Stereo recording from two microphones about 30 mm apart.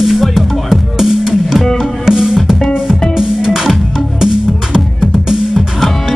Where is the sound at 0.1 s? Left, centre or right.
Centre.